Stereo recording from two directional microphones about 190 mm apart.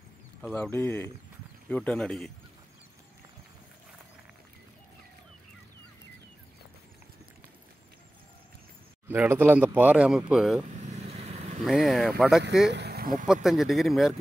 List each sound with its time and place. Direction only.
0.4 s speech: 5° left (ahead or behind)
9.0 s speech: 10° right (ahead or behind)
10.8 s vehicle: 35° right (ahead or behind)
11.6 s speech: centre (ahead or behind)
12.7 s speech: 55° right (ahead or behind)
13.3 s speech: centre (ahead or behind)